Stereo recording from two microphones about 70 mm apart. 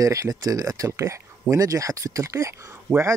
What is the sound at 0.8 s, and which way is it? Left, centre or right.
Speech, right.